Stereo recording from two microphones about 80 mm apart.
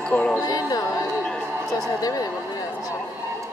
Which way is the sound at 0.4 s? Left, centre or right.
Left.